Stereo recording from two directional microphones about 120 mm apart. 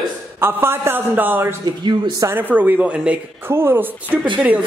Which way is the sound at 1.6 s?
35° right (ahead or behind).